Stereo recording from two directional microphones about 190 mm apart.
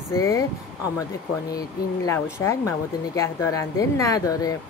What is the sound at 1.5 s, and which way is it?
Speech, 15° left (ahead or behind).